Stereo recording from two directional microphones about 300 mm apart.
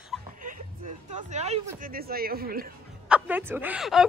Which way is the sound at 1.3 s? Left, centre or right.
Right.